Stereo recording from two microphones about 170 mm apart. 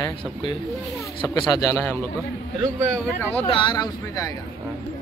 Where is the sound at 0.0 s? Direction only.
30° left (ahead or behind).